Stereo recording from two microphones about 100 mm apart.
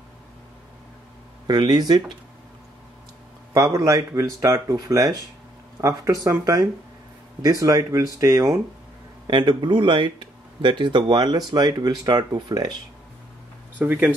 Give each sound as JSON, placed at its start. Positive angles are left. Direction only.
{"t": 1.5, "sound": "speech", "side_deg": -45}
{"t": 3.5, "sound": "speech", "side_deg": -35}
{"t": 7.6, "sound": "speech", "side_deg": -30}
{"t": 9.3, "sound": "speech", "side_deg": -50}
{"t": 13.7, "sound": "speech", "side_deg": -15}